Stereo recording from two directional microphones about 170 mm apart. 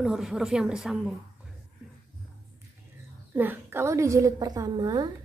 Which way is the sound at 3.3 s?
10° right (ahead or behind).